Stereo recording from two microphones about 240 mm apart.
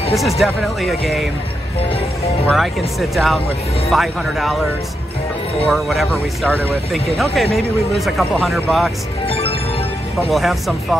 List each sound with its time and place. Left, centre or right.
0.1 s speech: centre
2.4 s speech: centre
5.7 s speech: centre
9.2 s music: left
10.3 s speech: centre